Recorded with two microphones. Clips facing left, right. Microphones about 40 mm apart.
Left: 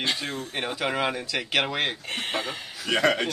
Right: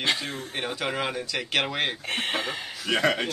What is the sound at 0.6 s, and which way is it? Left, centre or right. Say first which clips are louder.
Speech: left 2 dB; centre.